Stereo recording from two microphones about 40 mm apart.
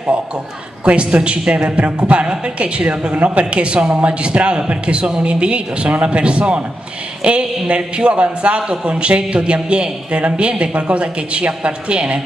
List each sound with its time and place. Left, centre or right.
0.8 s a man's voice: right